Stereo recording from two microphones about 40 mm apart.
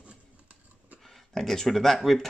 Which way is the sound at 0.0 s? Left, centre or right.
Right.